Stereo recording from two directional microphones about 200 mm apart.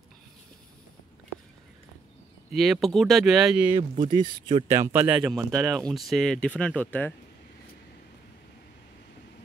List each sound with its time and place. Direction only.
2.5 s speech: centre (ahead or behind)
3.7 s speech: 30° right (ahead or behind); by 7.2 s 5° left (ahead or behind)